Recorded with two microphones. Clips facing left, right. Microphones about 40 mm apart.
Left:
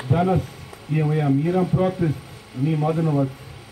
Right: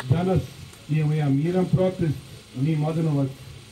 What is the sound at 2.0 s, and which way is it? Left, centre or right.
Speech, left.